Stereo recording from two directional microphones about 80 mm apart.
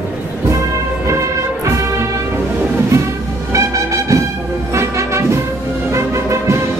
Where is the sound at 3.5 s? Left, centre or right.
Right.